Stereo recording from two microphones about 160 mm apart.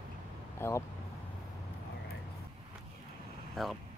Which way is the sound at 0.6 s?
15° left (ahead or behind).